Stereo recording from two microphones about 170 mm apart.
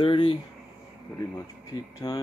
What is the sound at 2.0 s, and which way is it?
Speech, 20° left (ahead or behind).